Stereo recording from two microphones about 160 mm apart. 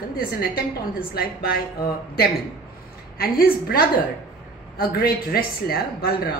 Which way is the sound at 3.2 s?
70° left (ahead or behind).